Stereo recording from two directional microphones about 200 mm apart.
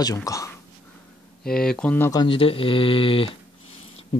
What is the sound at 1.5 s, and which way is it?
Speech, 5° left (ahead or behind).